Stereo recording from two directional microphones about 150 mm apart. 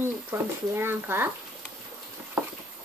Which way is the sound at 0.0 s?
15° right (ahead or behind).